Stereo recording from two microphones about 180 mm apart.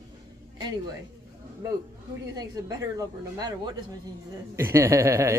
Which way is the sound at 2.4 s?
20° right (ahead or behind).